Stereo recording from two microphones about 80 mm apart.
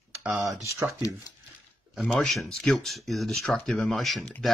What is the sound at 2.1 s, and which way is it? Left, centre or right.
Speech, centre.